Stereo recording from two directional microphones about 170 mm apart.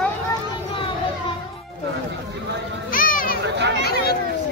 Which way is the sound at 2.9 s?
55° left (ahead or behind).